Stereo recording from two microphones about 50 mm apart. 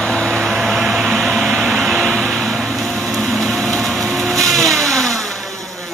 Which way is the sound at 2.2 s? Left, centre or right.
Centre.